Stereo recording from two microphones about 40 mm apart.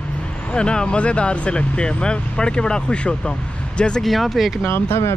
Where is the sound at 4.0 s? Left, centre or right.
Centre.